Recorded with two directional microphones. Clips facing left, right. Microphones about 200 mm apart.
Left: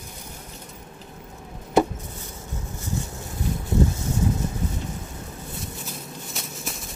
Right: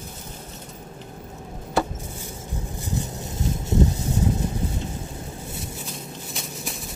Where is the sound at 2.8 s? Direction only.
20° right (ahead or behind).